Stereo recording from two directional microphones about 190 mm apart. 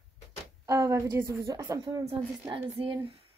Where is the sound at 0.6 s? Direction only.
15° right (ahead or behind).